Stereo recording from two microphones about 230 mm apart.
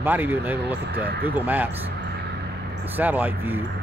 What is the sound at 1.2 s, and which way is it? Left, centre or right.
Speech, centre.